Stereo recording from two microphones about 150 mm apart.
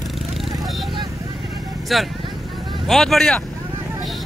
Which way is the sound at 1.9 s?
Centre (ahead or behind).